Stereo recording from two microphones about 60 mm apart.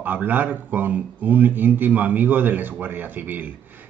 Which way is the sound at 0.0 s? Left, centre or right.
Right.